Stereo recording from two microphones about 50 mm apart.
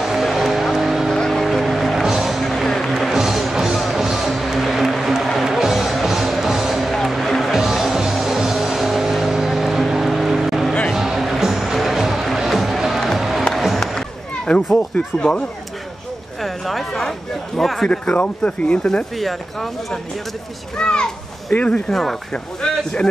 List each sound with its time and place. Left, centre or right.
0.0 s music: centre
1.1 s music: centre
2.4 s music: centre
2.9 s music: centre
13.6 s a sound: centre
13.9 s a sound: centre
14.8 s speech: left
16.4 s a sound: centre
17.8 s speech: left
19.1 s speech: centre
20.7 s a child's voice: centre
21.5 s speech: left